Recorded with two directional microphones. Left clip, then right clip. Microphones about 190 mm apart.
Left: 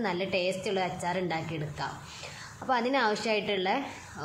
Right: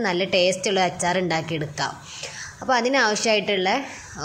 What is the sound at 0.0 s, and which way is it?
A woman's voice, 15° right (ahead or behind).